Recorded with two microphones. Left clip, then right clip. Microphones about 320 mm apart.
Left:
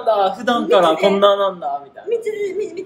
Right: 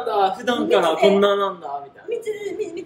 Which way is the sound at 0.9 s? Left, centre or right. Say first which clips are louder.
Even; centre.